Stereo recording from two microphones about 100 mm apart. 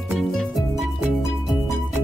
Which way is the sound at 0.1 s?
Centre (ahead or behind).